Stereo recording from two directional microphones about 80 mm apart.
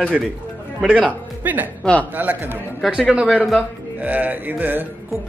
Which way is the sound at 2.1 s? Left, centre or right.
Right.